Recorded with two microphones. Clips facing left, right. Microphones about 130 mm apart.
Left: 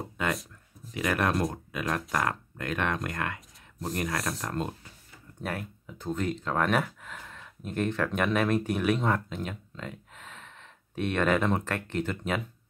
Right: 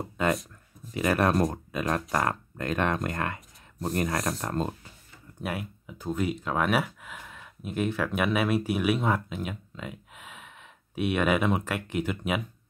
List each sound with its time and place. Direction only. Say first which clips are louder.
0.2 s a sound: right 4 dB; 35° right (ahead or behind)
0.9 s speech: right 3 dB; 35° right (ahead or behind)
5.4 s speech: right 1 dB; 10° right (ahead or behind)